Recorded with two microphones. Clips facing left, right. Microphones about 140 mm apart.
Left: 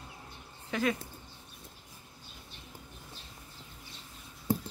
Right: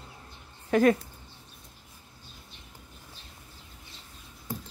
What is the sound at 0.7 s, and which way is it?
Speech, 50° right (ahead or behind).